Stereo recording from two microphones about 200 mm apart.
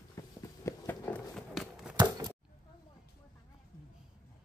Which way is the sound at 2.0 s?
20° right (ahead or behind).